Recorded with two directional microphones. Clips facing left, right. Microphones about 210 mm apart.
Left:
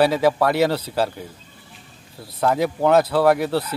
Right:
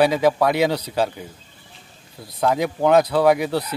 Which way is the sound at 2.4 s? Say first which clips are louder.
Even; 5° left (ahead or behind).